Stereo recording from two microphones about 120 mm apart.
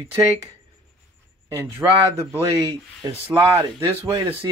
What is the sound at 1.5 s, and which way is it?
Speech, 20° right (ahead or behind).